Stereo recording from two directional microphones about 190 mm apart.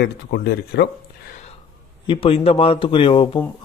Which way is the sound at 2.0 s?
30° left (ahead or behind).